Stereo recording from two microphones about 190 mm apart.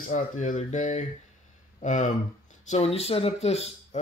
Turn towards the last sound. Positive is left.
turn(degrees=35)  # may be behind; listen again after turning